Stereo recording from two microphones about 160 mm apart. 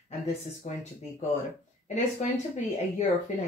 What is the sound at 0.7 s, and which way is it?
Speech, 55° left (ahead or behind).